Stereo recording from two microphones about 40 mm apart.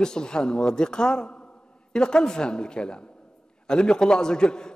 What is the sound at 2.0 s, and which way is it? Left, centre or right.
A man's voice, centre.